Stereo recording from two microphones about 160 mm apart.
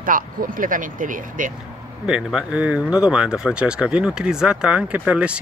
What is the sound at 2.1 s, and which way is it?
Speech, 5° right (ahead or behind).